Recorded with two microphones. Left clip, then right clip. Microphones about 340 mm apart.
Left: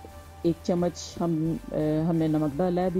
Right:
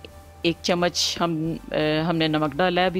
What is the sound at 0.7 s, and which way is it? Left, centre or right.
Speech, right.